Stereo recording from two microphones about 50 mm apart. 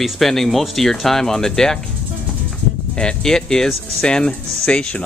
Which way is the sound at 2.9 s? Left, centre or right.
Centre.